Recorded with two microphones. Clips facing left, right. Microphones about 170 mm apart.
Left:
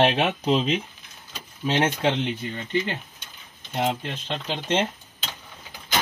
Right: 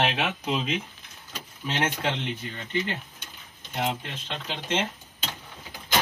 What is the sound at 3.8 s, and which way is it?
Speech, 35° left (ahead or behind).